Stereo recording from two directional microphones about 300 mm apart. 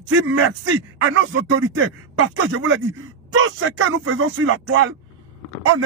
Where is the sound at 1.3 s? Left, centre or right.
Right.